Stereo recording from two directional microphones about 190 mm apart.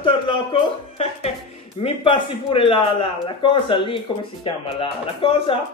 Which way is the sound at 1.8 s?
30° left (ahead or behind).